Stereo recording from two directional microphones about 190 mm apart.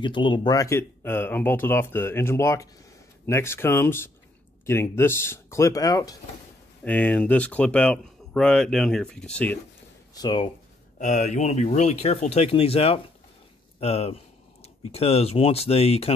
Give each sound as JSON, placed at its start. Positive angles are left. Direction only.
{"t": 0.0, "sound": "speech", "side_deg": 25}
{"t": 6.8, "sound": "speech", "side_deg": 10}
{"t": 10.1, "sound": "speech", "side_deg": 25}
{"t": 11.0, "sound": "speech", "side_deg": 40}